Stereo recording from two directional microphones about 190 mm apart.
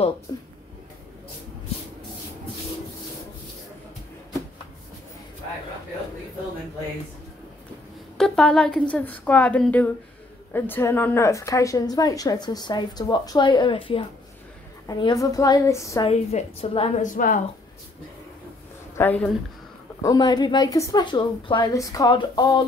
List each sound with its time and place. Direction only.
0.3 s a woman's voice: 20° left (ahead or behind)
8.2 s a woman's voice: 5° left (ahead or behind)
16.1 s a woman's voice: 30° left (ahead or behind)
18.9 s speech: 10° left (ahead or behind)
20.0 s a woman's voice: 20° left (ahead or behind)